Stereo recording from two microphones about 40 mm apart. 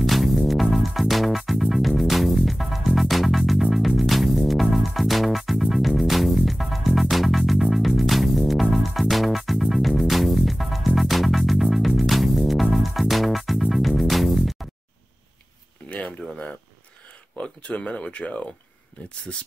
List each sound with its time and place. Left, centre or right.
0.0 s music: centre
15.9 s a sound: left
17.4 s speech: left